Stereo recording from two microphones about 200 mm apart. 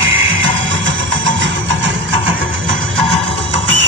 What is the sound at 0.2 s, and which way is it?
Music, 75° right (ahead or behind).